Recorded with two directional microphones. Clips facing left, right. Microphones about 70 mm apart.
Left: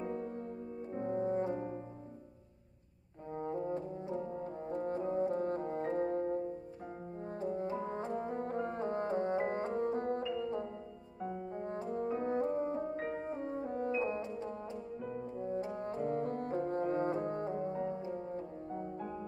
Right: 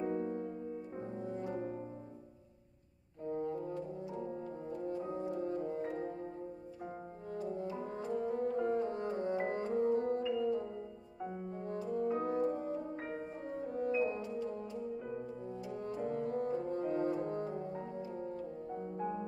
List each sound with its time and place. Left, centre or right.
1.0 s music: left
3.3 s french horn: left
4.6 s french horn: left
7.2 s brass instrument: left
11.5 s music: left
15.5 s brass instrument: left